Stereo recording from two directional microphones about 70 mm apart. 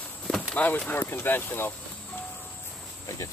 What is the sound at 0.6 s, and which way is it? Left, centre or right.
Speech, left.